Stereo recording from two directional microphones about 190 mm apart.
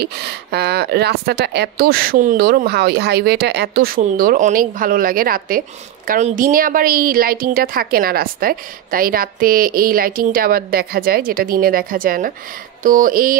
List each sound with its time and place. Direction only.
0.0 s a woman's voice: 60° right (ahead or behind)
4.0 s a woman's voice: 45° right (ahead or behind)